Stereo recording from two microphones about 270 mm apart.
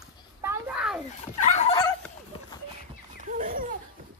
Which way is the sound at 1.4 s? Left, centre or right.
Left.